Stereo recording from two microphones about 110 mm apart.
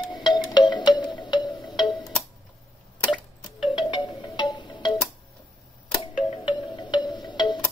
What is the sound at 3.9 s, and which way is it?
Music, 45° left (ahead or behind).